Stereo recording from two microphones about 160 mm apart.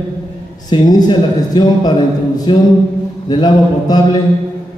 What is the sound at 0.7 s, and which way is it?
A man's voice, 25° left (ahead or behind).